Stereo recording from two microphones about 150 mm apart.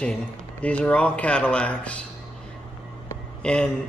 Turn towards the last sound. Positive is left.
turn(degrees=5)  # may be behind; listen again after turning